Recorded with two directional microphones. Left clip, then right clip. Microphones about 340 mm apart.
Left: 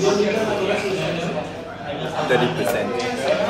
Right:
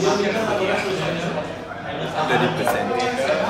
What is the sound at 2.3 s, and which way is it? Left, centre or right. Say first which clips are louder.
Speech: left 1 dB; centre.